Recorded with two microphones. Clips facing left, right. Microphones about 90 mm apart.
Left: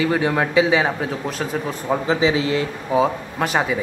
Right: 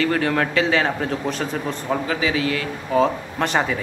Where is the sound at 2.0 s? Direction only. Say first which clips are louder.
Left 6 dB; 25° left (ahead or behind).